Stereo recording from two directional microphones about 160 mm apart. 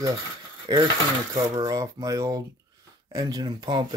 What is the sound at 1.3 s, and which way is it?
Speech, 20° right (ahead or behind).